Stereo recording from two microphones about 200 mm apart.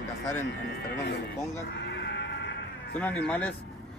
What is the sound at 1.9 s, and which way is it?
Music, 60° left (ahead or behind).